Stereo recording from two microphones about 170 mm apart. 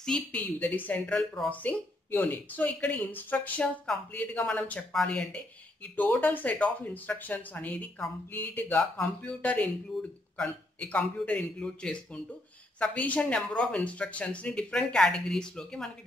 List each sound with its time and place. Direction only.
0.0 s speech: 5° left (ahead or behind)